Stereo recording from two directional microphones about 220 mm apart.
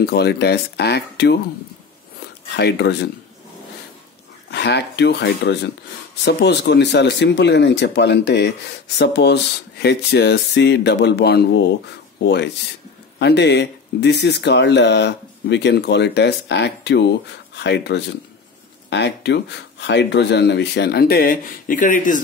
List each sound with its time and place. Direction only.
0.0 s speech: 50° left (ahead or behind)
2.5 s speech: 50° left (ahead or behind)
4.5 s speech: 50° left (ahead or behind)